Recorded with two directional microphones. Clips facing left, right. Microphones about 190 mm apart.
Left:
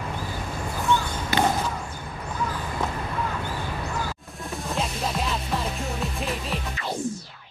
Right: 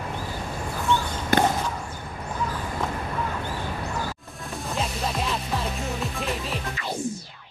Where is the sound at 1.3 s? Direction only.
50° right (ahead or behind).